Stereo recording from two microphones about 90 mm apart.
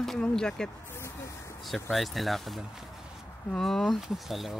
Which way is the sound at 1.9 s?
Centre (ahead or behind).